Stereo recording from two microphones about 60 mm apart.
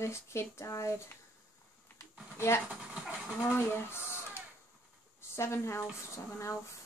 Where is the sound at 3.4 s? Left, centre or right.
Left.